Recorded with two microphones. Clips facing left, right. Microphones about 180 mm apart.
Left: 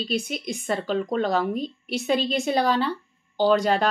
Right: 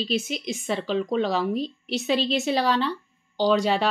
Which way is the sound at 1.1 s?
50° left (ahead or behind).